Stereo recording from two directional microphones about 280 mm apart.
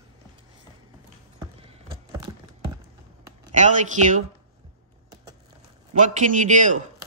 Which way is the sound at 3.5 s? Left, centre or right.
Right.